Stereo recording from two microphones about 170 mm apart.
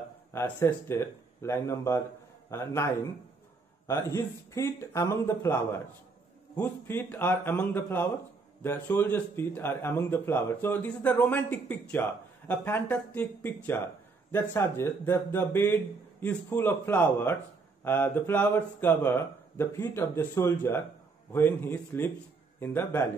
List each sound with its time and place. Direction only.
0.3 s speech: 15° left (ahead or behind)